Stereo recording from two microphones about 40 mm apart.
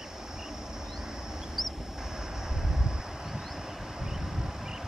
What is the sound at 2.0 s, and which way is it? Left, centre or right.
Vehicle, centre.